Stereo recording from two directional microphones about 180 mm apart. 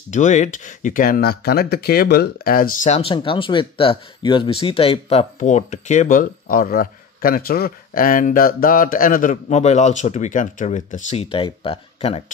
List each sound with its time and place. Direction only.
0.1 s speech: 40° left (ahead or behind)
2.9 s speech: 30° left (ahead or behind)